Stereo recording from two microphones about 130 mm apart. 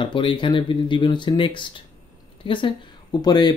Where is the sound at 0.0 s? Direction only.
40° left (ahead or behind).